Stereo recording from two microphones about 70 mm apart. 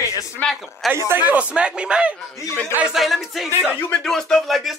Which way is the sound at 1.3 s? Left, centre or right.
Centre.